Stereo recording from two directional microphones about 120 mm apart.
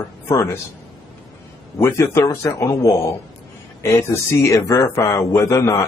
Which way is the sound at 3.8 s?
25° left (ahead or behind).